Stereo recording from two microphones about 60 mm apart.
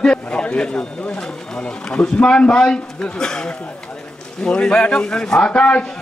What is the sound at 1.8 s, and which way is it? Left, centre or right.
A man's voice, centre.